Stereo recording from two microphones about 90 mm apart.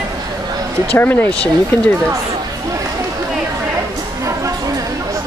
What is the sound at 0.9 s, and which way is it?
Speech, 20° left (ahead or behind).